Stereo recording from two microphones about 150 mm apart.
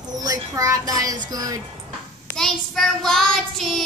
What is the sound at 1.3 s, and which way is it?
Speech, 25° right (ahead or behind).